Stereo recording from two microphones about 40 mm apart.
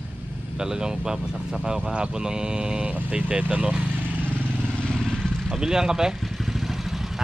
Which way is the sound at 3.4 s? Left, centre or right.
Right.